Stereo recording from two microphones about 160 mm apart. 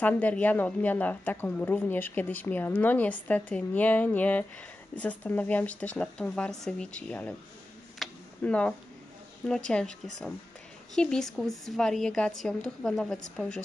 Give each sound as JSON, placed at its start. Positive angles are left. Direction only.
{"t": 0.0, "sound": "a woman's voice", "side_deg": 10}
{"t": 8.0, "sound": "tick-tock", "side_deg": 10}
{"t": 9.5, "sound": "a woman's voice", "side_deg": 5}
{"t": 11.0, "sound": "a woman's voice", "side_deg": 5}